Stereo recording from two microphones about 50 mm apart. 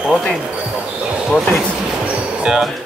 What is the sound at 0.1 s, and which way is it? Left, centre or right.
Speech, centre.